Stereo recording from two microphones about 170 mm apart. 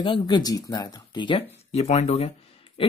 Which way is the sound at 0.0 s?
25° left (ahead or behind).